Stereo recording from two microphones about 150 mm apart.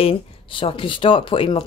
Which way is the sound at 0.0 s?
35° left (ahead or behind).